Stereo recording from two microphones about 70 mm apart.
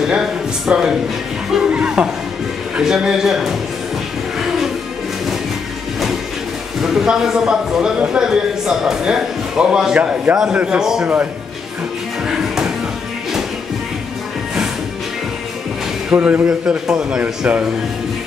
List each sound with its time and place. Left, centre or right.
0.0 s speech: centre
4.4 s music: centre
6.8 s speech: centre
12.3 s music: centre
16.1 s speech: right